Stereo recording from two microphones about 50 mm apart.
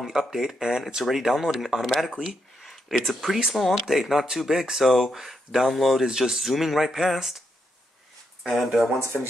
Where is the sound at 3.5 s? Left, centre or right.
Centre.